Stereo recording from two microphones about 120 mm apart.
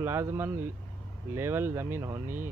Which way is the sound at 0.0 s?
20° right (ahead or behind).